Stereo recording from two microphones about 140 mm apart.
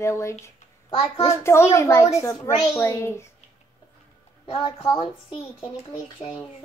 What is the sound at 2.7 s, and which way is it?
Speech, 20° left (ahead or behind).